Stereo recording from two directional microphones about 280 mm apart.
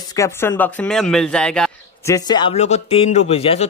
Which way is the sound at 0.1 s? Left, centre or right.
Centre.